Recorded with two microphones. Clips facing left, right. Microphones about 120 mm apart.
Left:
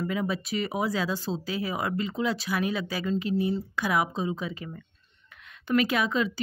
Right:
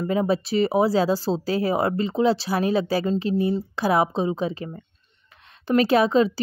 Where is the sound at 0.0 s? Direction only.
35° right (ahead or behind).